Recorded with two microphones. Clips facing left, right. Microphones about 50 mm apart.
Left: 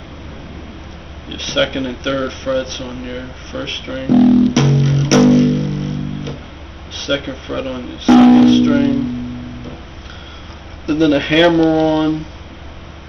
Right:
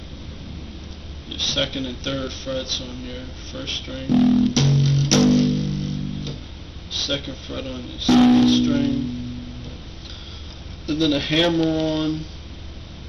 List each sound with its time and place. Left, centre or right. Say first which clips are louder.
1.3 s speech: left 7 dB; left
4.6 s music: left 6 dB; left
6.9 s speech: left 7 dB; left
10.9 s speech: left 7 dB; left